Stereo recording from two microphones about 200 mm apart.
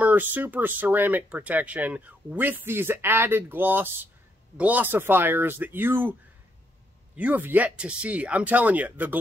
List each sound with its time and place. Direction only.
0.0 s speech: 10° right (ahead or behind)
7.2 s speech: 10° right (ahead or behind)